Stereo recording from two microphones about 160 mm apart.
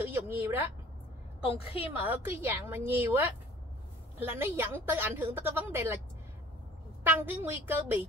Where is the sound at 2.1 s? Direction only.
15° right (ahead or behind).